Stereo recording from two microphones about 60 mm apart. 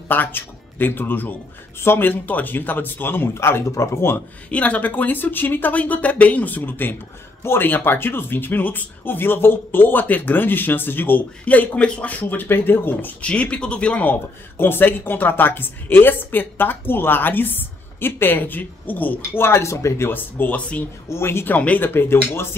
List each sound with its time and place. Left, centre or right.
0.1 s a man's voice: left
4.5 s a man's voice: left
13.2 s a man's voice: centre
19.4 s speech: left
20.1 s a man's voice: left
21.5 s a man's voice: left